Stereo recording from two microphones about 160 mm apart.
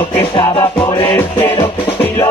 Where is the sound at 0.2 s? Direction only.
30° left (ahead or behind).